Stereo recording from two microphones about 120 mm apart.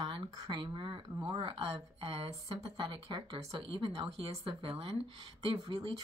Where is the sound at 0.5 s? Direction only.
40° right (ahead or behind).